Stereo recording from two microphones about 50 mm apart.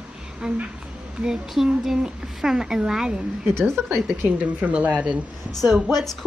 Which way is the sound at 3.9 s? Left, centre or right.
Right.